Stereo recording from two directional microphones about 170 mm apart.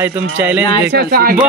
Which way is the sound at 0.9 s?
60° right (ahead or behind).